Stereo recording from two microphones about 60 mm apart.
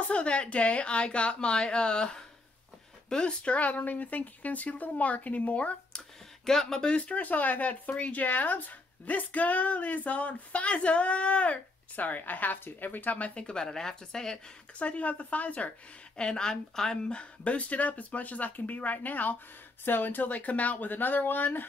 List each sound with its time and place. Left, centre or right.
0.1 s speech: centre
5.9 s speech: centre
14.8 s speech: left
16.2 s speech: centre; by 21.6 s left